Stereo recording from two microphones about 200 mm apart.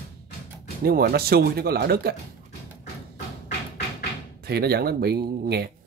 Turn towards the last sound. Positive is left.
turn(degrees=-50)  # may be behind; listen again after turning